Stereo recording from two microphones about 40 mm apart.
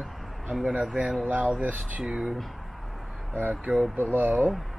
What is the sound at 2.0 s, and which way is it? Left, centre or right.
Speech, centre.